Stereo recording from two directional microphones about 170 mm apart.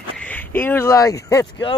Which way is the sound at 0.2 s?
10° left (ahead or behind).